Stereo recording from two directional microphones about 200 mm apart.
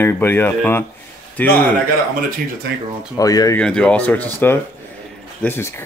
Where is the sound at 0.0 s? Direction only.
10° left (ahead or behind).